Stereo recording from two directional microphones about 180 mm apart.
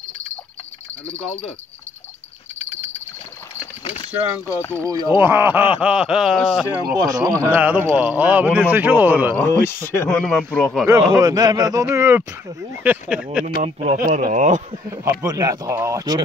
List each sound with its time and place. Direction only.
4.1 s a man's voice: 10° right (ahead or behind)
4.5 s speech: 15° left (ahead or behind)
4.8 s a man's voice: 20° right (ahead or behind)
7.0 s a man's voice: 20° right (ahead or behind)
9.4 s a man's voice: 15° left (ahead or behind)
11.1 s a man's voice: 20° right (ahead or behind); by 13.5 s 5° right (ahead or behind)
13.6 s speech: 35° right (ahead or behind)
13.9 s speech: 50° right (ahead or behind)
14.9 s a man's voice: 20° right (ahead or behind)